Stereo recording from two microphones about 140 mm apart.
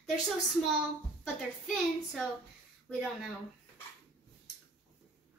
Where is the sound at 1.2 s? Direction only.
Centre (ahead or behind).